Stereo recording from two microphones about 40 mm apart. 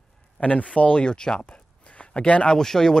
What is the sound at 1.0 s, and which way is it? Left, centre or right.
Speech, left.